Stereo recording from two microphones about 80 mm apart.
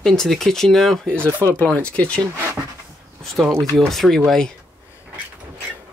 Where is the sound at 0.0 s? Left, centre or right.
Centre.